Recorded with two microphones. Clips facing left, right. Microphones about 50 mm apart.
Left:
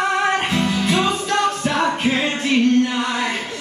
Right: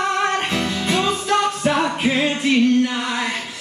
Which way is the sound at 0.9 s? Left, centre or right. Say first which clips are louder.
Right 1 dB; centre.